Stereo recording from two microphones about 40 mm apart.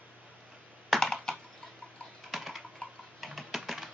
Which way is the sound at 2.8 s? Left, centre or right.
Left.